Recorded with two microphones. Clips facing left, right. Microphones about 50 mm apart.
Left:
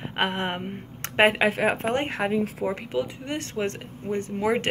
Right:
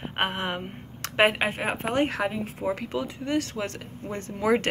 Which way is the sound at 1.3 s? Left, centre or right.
Left.